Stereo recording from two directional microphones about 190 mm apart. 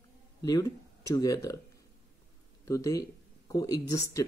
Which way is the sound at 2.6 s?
15° left (ahead or behind).